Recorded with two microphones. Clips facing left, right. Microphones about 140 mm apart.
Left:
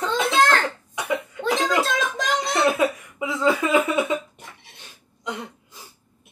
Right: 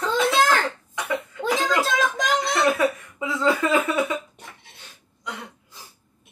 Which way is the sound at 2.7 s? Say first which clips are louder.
Even; 15° left (ahead or behind).